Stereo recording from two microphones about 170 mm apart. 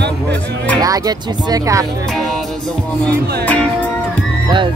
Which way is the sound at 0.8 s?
20° right (ahead or behind).